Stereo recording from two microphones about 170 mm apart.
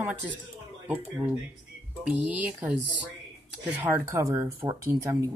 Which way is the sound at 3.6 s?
10° right (ahead or behind).